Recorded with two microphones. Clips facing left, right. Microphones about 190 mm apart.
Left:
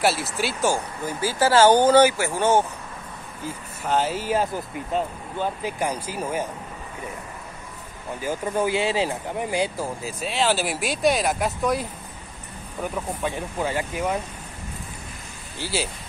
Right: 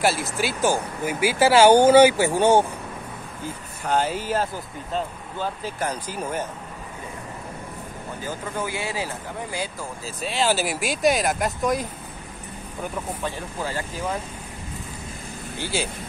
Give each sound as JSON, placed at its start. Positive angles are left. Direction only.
{"t": 0.0, "sound": "speech", "side_deg": 0}
{"t": 3.8, "sound": "speech", "side_deg": 5}
{"t": 8.5, "sound": "speech", "side_deg": 20}
{"t": 10.2, "sound": "speech", "side_deg": 0}
{"t": 12.9, "sound": "speech", "side_deg": 10}
{"t": 15.6, "sound": "speech", "side_deg": 5}